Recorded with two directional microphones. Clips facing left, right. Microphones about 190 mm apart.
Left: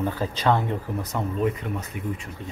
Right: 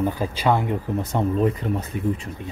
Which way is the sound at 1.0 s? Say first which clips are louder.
Right 5 dB; 30° right (ahead or behind).